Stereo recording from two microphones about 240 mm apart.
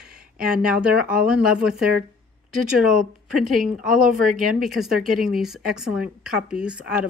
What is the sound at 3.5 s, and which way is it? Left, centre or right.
A woman's voice, right.